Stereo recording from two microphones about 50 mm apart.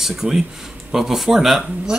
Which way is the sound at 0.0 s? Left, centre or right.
Centre.